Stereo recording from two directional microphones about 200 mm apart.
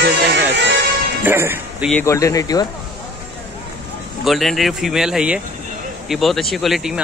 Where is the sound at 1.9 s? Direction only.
10° left (ahead or behind).